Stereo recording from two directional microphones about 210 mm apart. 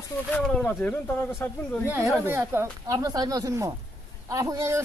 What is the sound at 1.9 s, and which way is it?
Speech, 10° right (ahead or behind).